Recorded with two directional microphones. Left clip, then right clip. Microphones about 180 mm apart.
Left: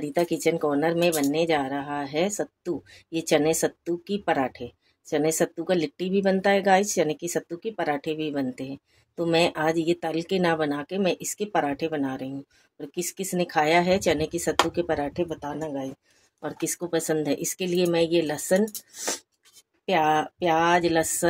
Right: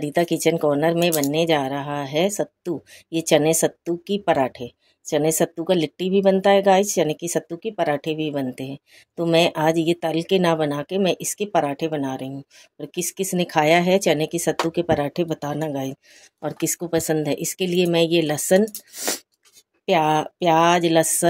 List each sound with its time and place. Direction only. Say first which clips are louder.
0.0 s speech: right 4 dB; 30° right (ahead or behind)
16.3 s speech: right 5 dB; 30° right (ahead or behind)